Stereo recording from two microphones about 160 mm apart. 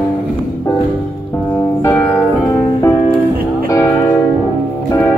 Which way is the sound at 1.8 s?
20° left (ahead or behind).